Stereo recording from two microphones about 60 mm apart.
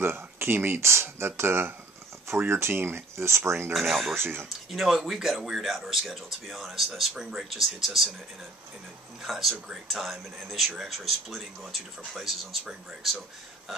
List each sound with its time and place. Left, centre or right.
0.0 s speech: right
3.7 s speech: centre
4.1 s speech: right
4.5 s speech: centre
9.2 s speech: centre